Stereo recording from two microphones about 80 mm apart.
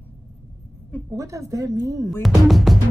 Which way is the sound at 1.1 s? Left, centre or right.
Right.